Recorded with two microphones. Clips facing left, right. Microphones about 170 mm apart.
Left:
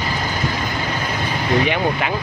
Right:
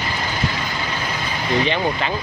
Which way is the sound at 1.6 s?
10° left (ahead or behind).